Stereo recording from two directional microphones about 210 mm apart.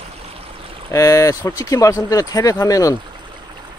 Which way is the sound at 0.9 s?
15° left (ahead or behind).